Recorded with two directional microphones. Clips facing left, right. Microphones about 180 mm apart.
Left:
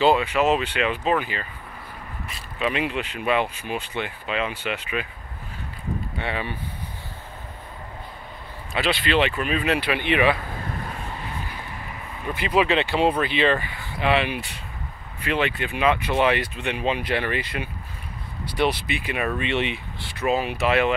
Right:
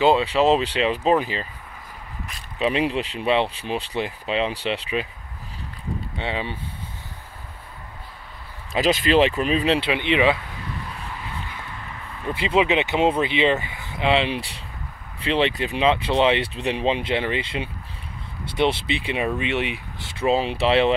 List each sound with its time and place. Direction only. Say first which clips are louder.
0.0 s speech: right 2 dB; 30° right (ahead or behind)
2.6 s speech: right 3 dB; 35° right (ahead or behind)
6.1 s speech: right 3 dB; 20° right (ahead or behind)
8.7 s speech: right 4 dB; 40° right (ahead or behind); by 10.3 s 20° right (ahead or behind)
10.4 s a sound: left 2 dB; 45° left (ahead or behind)
12.4 s speech: right 1 dB; 25° right (ahead or behind)
19.2 s speech: left 1 dB; 10° right (ahead or behind)
20.2 s speech: right 2 dB; 30° right (ahead or behind)